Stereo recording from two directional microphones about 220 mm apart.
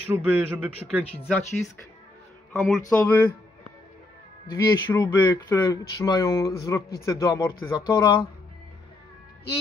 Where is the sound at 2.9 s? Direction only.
10° left (ahead or behind).